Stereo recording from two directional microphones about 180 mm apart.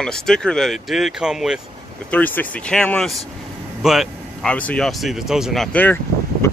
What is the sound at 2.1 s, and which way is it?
Speech, 10° left (ahead or behind).